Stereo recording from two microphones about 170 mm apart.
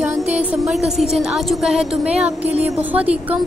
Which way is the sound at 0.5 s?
Centre (ahead or behind).